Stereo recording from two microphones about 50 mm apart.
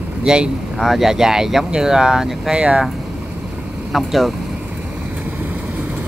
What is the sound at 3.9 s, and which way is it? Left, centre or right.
Speech, centre.